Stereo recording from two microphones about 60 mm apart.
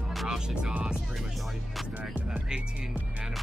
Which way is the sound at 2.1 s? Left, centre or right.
Centre.